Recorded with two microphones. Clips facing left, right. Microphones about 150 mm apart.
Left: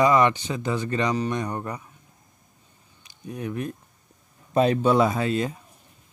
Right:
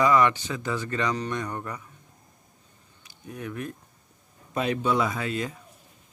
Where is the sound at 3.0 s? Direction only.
25° left (ahead or behind).